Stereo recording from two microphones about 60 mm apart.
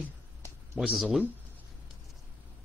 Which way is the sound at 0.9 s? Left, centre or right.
Centre.